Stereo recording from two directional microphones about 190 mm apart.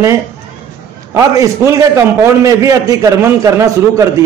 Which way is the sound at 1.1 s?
15° right (ahead or behind).